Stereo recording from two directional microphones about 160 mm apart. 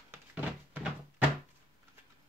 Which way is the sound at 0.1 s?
10° right (ahead or behind).